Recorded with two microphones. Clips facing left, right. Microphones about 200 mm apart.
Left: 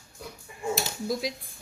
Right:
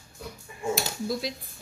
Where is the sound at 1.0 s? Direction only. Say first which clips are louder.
Left 1 dB; 15° left (ahead or behind).